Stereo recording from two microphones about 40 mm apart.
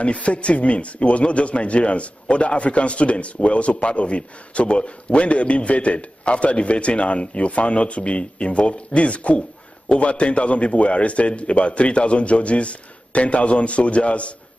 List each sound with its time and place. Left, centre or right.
0.0 s a man's voice: left